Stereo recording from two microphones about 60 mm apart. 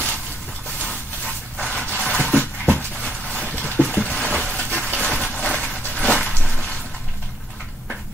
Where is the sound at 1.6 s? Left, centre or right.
Centre.